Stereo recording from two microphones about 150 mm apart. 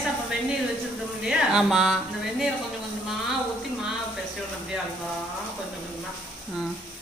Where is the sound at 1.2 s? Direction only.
5° right (ahead or behind).